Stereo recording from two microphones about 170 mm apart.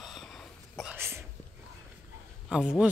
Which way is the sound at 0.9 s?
15° right (ahead or behind).